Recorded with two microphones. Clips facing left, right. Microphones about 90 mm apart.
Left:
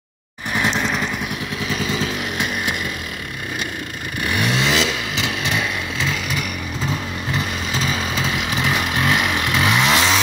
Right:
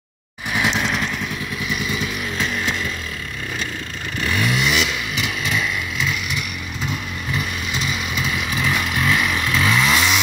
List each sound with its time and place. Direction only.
0.5 s vehicle: 5° right (ahead or behind)
1.7 s motorcycle: 35° left (ahead or behind)
2.3 s vehicle: 15° left (ahead or behind)
4.2 s vehicle: 20° left (ahead or behind)